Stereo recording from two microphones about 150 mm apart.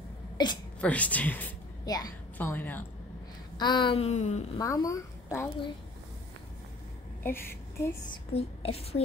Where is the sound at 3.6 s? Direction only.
30° left (ahead or behind).